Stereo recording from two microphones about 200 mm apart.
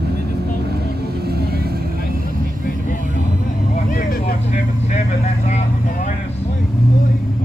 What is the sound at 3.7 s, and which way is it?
Vehicle, 45° left (ahead or behind).